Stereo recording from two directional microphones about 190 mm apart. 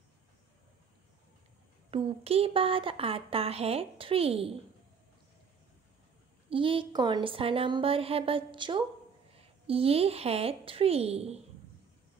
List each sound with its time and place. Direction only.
1.9 s speech: 30° right (ahead or behind)
6.5 s a woman's voice: 25° right (ahead or behind)